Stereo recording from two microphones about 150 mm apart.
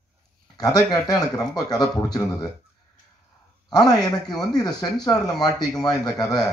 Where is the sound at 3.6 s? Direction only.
25° left (ahead or behind).